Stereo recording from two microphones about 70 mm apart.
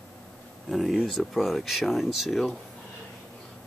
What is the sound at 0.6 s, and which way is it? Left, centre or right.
Speech, centre.